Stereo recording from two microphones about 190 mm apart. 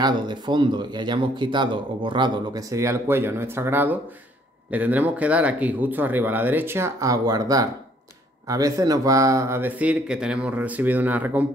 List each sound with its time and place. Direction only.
0.0 s speech: 25° right (ahead or behind)